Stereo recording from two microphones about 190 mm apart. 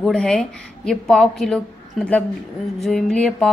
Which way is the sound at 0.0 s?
5° left (ahead or behind).